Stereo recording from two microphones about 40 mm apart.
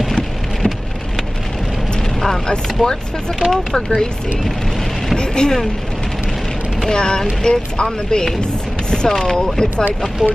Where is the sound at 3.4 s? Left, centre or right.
Right.